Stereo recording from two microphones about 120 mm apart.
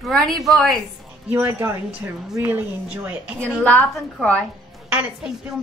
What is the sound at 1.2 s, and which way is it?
A woman's voice, 15° right (ahead or behind).